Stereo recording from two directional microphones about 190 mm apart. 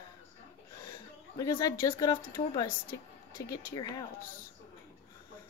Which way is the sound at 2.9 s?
50° left (ahead or behind).